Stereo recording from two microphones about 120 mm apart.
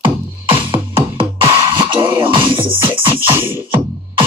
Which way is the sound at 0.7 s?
50° right (ahead or behind).